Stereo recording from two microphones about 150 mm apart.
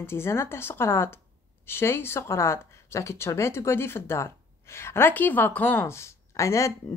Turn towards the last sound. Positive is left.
turn(degrees=20)  # may be behind; listen again after turning